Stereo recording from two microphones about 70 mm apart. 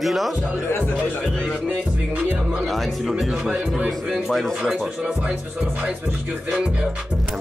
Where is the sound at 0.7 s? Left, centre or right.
Left.